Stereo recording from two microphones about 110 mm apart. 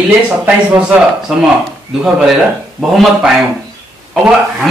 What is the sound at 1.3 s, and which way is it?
Speech, centre (ahead or behind).